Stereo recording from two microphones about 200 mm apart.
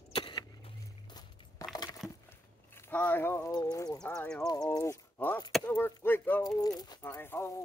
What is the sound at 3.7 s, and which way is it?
Clip-clop, 15° left (ahead or behind).